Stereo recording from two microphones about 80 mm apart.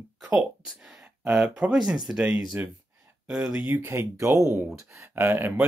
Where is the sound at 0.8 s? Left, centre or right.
Centre.